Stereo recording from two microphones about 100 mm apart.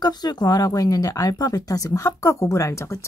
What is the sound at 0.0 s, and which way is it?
Speech, 45° left (ahead or behind).